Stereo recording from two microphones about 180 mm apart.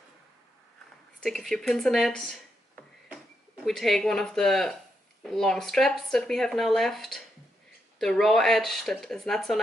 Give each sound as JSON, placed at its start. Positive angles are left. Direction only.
{"t": 1.2, "sound": "speech", "side_deg": 0}
{"t": 3.6, "sound": "speech", "side_deg": 0}